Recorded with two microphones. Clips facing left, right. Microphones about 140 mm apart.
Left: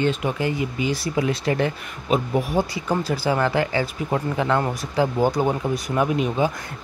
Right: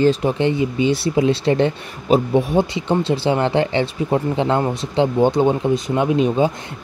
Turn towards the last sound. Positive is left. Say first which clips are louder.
# right 5 dB
turn(degrees=-25)  # may be behind; listen again after turning